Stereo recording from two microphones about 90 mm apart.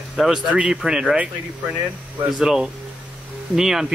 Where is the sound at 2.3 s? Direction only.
5° right (ahead or behind).